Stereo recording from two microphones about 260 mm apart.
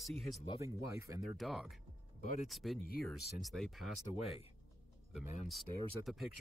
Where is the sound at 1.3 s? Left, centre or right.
Centre.